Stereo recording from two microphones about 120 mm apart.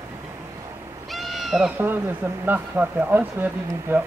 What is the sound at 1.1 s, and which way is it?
Owl, centre (ahead or behind).